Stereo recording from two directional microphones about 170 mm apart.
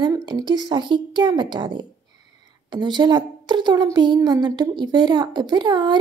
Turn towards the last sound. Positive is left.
turn(degrees=-25)  # may be behind; listen again after turning